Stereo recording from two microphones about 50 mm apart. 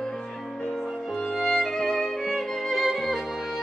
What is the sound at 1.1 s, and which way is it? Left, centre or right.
Music, centre.